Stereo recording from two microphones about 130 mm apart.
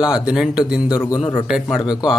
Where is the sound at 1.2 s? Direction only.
45° left (ahead or behind).